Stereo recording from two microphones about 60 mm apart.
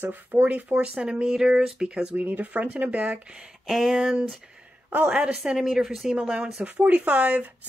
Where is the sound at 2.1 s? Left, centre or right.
Right.